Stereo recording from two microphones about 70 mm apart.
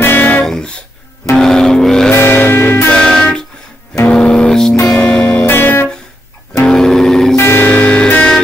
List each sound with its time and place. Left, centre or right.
0.0 s music: left
0.5 s music: centre
2.1 s music: left
2.9 s music: centre
5.5 s music: left
6.6 s music: centre
7.3 s music: left
7.6 s music: left